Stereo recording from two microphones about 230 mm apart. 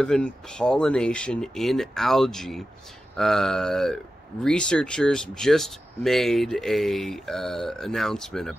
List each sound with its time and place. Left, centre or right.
0.0 s speech: centre